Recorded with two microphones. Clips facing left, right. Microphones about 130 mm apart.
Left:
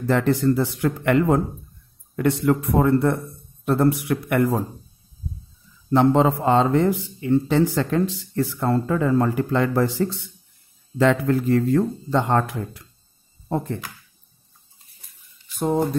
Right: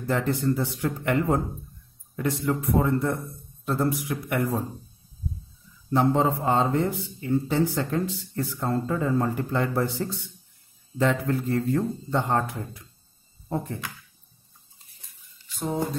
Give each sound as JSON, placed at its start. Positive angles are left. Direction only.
{"t": 0.0, "sound": "a man's voice", "side_deg": 80}
{"t": 2.1, "sound": "a man's voice", "side_deg": 70}
{"t": 5.9, "sound": "a man's voice", "side_deg": 90}
{"t": 15.6, "sound": "a sound", "side_deg": 65}